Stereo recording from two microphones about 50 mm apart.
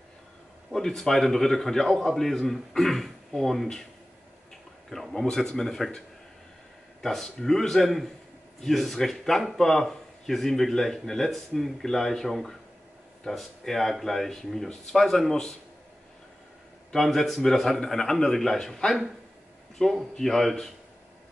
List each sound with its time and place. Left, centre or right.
0.7 s a man's voice: centre
5.2 s a man's voice: centre
7.0 s a man's voice: centre
16.9 s a man's voice: centre